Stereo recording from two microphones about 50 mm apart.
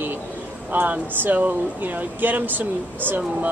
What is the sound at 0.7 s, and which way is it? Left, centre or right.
Speech, right.